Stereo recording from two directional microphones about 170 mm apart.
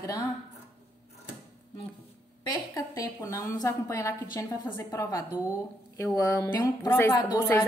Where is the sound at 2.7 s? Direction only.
20° left (ahead or behind).